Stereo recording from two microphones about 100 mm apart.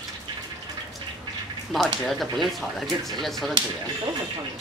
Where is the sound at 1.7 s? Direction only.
5° left (ahead or behind).